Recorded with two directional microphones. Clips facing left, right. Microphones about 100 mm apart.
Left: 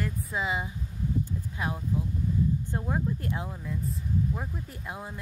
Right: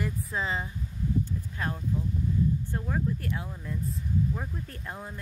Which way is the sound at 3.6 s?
5° left (ahead or behind).